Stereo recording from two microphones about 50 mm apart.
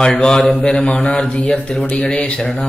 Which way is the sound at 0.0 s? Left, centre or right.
Centre.